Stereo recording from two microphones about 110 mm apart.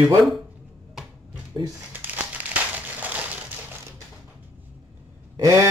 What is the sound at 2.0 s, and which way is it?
Crumpling, 15° right (ahead or behind).